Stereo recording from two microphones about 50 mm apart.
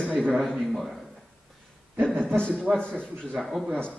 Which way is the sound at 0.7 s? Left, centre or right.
Centre.